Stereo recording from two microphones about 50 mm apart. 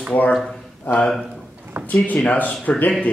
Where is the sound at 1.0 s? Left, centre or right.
Centre.